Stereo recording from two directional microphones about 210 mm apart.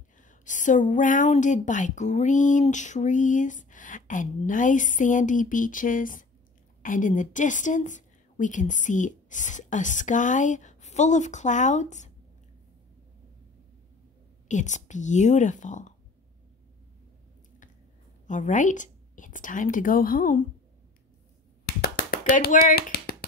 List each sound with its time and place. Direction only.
0.2 s a woman's voice: 35° left (ahead or behind)
14.5 s a woman's voice: 35° left (ahead or behind)
18.2 s a woman's voice: 35° left (ahead or behind)
21.6 s a sound: 45° left (ahead or behind)